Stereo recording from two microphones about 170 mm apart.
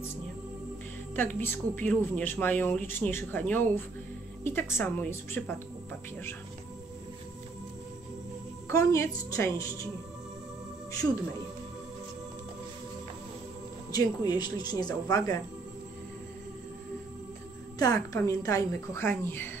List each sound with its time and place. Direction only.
1.1 s a woman's voice: 10° left (ahead or behind)
8.6 s a woman's voice: 15° left (ahead or behind)
10.9 s speech: 20° left (ahead or behind)
13.9 s speech: 25° left (ahead or behind)
17.7 s a woman's voice: 20° left (ahead or behind)